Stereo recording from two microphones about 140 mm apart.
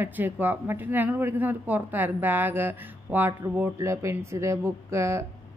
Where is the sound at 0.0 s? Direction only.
15° right (ahead or behind).